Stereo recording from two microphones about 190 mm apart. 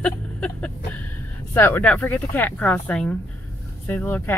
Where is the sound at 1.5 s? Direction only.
10° left (ahead or behind).